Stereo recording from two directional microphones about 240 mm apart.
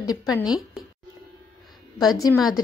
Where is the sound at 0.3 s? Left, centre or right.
Centre.